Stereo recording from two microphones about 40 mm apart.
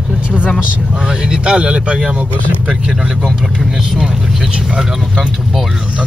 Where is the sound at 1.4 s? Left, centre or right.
Right.